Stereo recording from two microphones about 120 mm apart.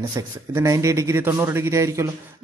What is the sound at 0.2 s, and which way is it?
A man's voice, 30° right (ahead or behind).